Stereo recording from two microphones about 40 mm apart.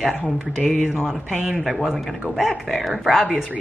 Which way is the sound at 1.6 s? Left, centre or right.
Centre.